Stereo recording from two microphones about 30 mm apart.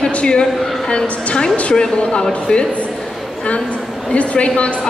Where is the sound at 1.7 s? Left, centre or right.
Left.